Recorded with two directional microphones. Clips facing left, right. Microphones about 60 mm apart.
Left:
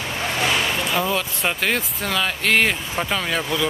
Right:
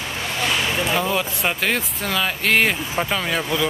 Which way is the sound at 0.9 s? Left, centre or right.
Centre.